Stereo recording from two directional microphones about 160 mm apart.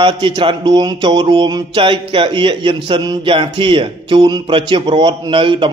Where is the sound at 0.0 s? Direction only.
30° right (ahead or behind).